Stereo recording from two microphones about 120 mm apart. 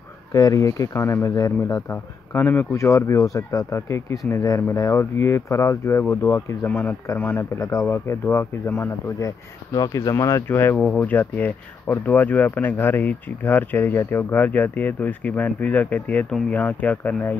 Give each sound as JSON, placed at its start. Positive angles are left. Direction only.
{"t": 0.3, "sound": "speech", "side_deg": 30}
{"t": 1.9, "sound": "speech", "side_deg": 20}